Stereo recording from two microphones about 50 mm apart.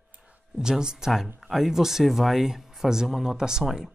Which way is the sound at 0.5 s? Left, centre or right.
Centre.